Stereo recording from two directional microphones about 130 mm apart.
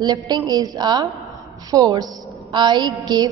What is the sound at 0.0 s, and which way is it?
A woman's voice, 30° right (ahead or behind).